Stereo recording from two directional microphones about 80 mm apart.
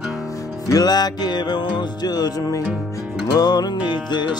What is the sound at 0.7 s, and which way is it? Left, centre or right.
Music, left.